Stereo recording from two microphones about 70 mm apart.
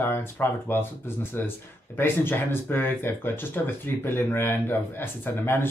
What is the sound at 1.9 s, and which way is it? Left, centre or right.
Speech, left.